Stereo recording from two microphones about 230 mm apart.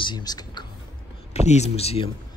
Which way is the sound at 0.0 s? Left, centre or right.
Centre.